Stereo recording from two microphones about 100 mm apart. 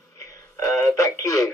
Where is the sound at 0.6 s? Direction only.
5° left (ahead or behind).